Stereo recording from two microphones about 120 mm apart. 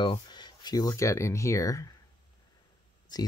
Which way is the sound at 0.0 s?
40° left (ahead or behind).